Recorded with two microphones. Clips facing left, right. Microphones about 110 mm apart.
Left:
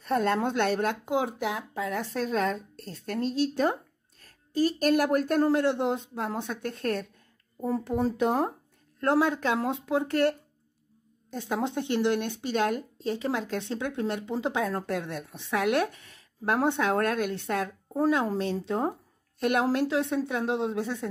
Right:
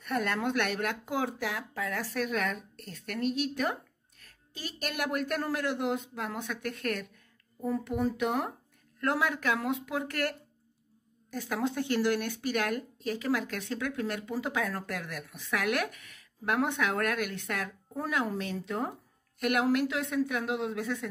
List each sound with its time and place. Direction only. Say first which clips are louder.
0.0 s speech: left 5 dB; 25° left (ahead or behind)